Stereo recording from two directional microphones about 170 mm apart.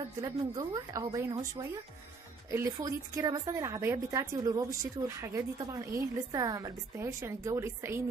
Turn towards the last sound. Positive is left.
turn(degrees=-15)  # may be behind; listen again after turning